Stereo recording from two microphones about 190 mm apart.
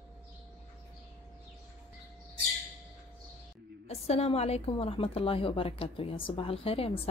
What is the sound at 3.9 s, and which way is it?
A woman's voice, 30° left (ahead or behind).